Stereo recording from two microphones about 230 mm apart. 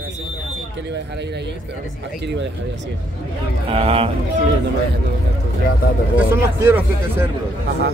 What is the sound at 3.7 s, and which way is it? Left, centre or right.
Speech, right.